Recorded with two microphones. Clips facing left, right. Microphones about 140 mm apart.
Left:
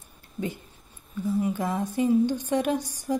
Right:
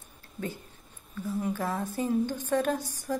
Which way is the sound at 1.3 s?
10° left (ahead or behind).